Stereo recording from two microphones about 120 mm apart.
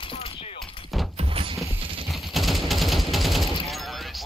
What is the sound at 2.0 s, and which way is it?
Machine gun, centre (ahead or behind).